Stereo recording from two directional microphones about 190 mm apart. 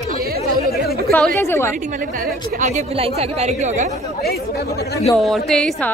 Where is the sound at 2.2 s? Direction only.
40° right (ahead or behind).